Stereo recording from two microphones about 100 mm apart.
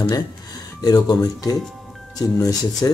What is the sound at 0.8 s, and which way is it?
Speech, 40° left (ahead or behind).